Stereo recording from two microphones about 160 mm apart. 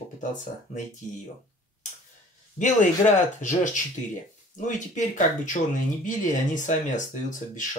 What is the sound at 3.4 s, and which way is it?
Speech, 50° left (ahead or behind).